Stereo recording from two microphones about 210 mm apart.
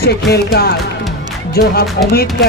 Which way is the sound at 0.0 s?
50° left (ahead or behind).